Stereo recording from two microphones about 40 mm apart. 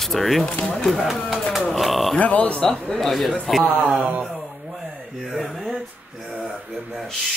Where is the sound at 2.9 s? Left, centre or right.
Centre.